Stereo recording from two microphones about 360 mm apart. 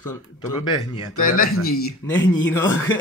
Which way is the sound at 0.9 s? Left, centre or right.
Left.